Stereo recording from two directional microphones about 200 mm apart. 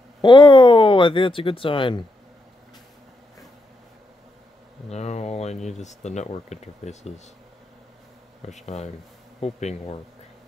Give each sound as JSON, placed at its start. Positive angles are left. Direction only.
{"t": 0.2, "sound": "speech", "side_deg": 25}
{"t": 4.8, "sound": "speech", "side_deg": 35}
{"t": 8.6, "sound": "speech", "side_deg": 35}